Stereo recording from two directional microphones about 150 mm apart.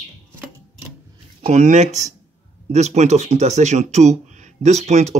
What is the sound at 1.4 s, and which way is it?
Speech, 50° right (ahead or behind).